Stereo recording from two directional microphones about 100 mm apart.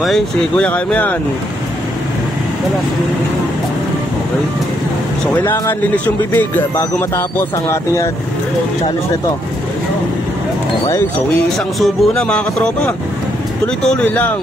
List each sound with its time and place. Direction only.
0.0 s speech: 5° left (ahead or behind)
0.7 s speech: 15° left (ahead or behind)
5.4 s speech: 20° left (ahead or behind)
11.3 s speech: 5° left (ahead or behind)
13.8 s speech: 10° left (ahead or behind)